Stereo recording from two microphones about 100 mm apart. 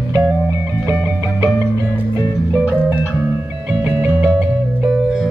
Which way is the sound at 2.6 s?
15° right (ahead or behind).